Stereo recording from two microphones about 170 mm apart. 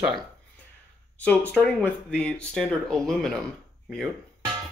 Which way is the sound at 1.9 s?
5° left (ahead or behind).